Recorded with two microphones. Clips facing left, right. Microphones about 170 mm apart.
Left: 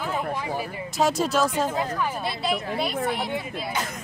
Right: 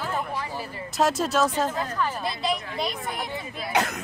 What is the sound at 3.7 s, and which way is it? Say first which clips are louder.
Speech: right 8 dB; 70° right (ahead or behind).